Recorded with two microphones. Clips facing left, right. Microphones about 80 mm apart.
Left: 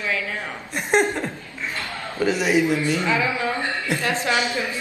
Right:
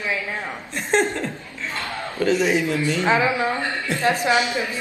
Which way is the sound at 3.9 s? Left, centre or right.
Left.